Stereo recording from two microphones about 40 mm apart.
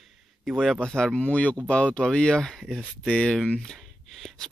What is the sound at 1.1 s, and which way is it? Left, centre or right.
Speech, left.